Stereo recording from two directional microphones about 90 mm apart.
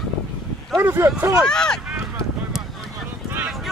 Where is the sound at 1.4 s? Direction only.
10° left (ahead or behind).